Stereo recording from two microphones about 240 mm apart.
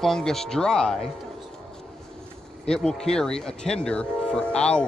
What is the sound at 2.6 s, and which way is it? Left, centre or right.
Speech, centre.